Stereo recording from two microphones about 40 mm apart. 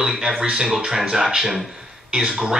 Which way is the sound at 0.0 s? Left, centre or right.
Centre.